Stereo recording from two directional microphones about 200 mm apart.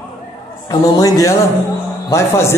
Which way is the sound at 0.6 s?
20° left (ahead or behind).